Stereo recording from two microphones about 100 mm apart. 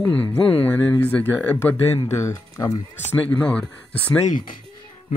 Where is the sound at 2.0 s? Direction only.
35° left (ahead or behind).